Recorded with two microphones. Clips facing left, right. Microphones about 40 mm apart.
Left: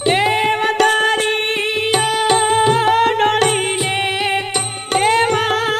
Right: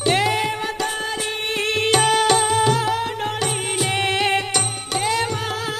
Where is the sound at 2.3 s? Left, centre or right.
Left.